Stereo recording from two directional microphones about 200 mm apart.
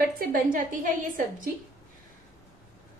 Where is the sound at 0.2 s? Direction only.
45° right (ahead or behind).